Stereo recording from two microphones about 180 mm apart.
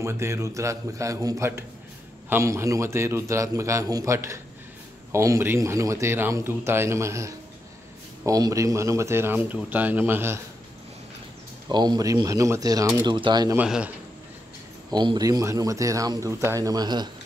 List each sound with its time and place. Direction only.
0.0 s a man's voice: 15° right (ahead or behind)
11.7 s speech: 25° right (ahead or behind)
13.6 s speech: 5° right (ahead or behind)
14.9 s speech: 25° right (ahead or behind)